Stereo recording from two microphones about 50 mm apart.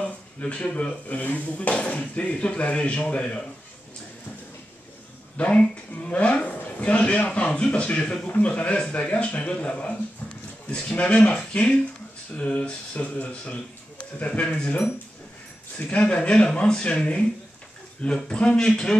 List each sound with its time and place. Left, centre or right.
0.0 s a sound: left
0.7 s speech: left
5.4 s speech: left
15.9 s a man's voice: left